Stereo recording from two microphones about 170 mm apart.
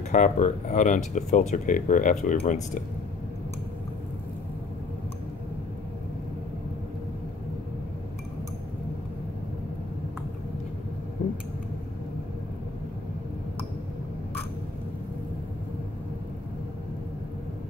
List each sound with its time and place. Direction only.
0.1 s speech: 45° left (ahead or behind)